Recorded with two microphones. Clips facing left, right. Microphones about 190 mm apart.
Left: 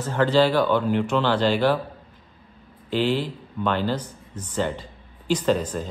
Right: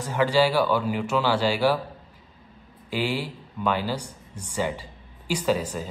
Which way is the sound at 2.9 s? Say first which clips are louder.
Left 4 dB; 10° right (ahead or behind).